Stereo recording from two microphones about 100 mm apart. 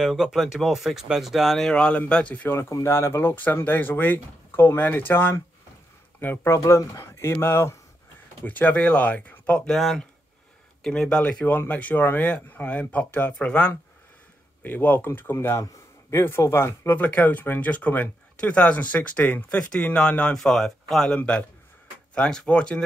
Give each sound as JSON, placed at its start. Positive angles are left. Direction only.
{"t": 0.0, "sound": "speech", "side_deg": -5}
{"t": 2.7, "sound": "speech", "side_deg": 30}
{"t": 9.8, "sound": "speech", "side_deg": 0}
{"t": 21.2, "sound": "speech", "side_deg": 15}